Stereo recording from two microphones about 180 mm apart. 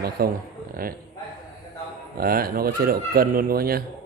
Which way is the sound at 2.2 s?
55° right (ahead or behind).